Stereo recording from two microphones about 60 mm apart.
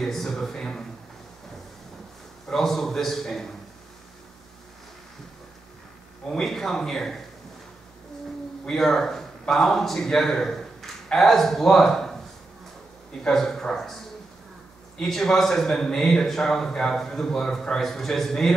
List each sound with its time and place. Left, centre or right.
0.0 s a man's voice: centre
2.4 s a man's voice: centre
6.2 s a man's voice: centre
8.6 s speech: centre
13.2 s a man's voice: centre
15.0 s a man's voice: centre